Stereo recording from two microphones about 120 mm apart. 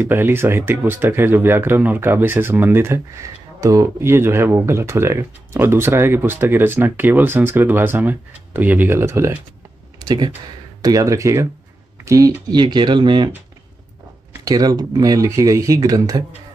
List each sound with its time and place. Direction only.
0.0 s speech: 20° right (ahead or behind)
9.9 s speech: 35° right (ahead or behind)
12.4 s speech: 40° right (ahead or behind)
14.4 s speech: 35° right (ahead or behind)